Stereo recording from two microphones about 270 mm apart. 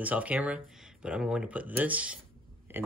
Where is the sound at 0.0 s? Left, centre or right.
Centre.